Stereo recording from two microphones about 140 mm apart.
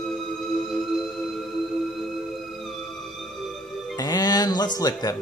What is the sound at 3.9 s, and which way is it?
Music, 25° left (ahead or behind).